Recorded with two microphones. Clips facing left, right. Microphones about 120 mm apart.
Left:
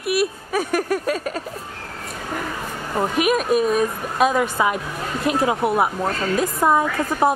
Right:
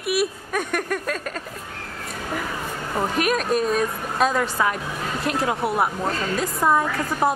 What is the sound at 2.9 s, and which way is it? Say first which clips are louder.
Speech: left 3 dB; 5° left (ahead or behind).